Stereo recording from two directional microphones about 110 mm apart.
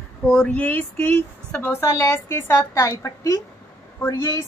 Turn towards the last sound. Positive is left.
turn(degrees=30)  # may be behind; listen again after turning